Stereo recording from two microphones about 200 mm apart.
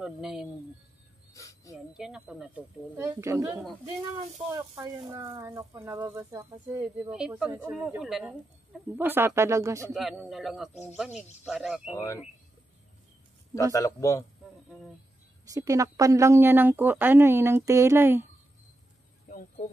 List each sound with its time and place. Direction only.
0.0 s a man's voice: 5° right (ahead or behind)
1.3 s speech: 15° left (ahead or behind)
2.0 s a man's voice: 5° right (ahead or behind)
9.9 s a man's voice: centre (ahead or behind)
13.7 s a man's voice: 15° left (ahead or behind)
15.4 s speech: 15° right (ahead or behind)
19.2 s a sound: 40° left (ahead or behind)